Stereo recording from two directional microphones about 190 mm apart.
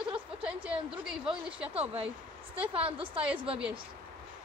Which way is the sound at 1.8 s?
30° right (ahead or behind).